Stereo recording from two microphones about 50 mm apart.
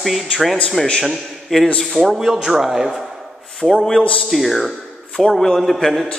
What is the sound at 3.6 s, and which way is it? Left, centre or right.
Speech, right.